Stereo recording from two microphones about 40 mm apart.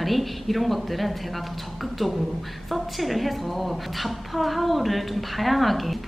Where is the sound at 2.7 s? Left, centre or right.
Centre.